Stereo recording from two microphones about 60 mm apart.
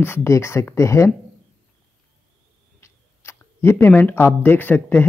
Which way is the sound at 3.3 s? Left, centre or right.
Left.